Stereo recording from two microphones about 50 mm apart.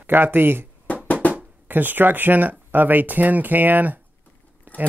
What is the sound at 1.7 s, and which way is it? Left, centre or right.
Speech, right.